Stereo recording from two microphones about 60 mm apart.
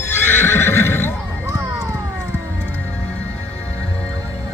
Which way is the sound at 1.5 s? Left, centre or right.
Right.